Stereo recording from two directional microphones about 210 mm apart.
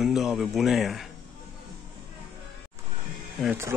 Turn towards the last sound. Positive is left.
turn(degrees=0)  # may be behind; listen again after turning